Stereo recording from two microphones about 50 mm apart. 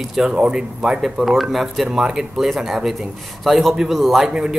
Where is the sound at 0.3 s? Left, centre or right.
Centre.